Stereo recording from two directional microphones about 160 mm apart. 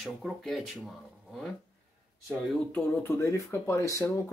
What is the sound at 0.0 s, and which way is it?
Speech, centre (ahead or behind).